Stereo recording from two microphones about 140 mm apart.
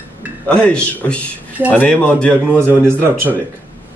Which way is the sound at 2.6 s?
15° right (ahead or behind).